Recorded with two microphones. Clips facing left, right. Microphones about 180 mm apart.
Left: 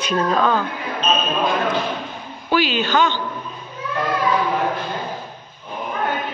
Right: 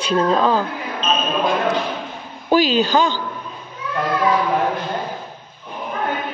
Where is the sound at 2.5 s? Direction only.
40° right (ahead or behind).